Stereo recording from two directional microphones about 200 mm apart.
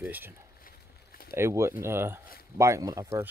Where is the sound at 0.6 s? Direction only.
50° left (ahead or behind).